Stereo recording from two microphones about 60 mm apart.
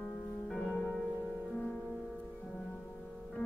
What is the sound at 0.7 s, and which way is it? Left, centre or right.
Music, centre.